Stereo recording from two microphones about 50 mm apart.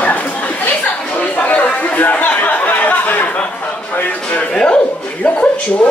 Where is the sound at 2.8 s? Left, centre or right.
Left.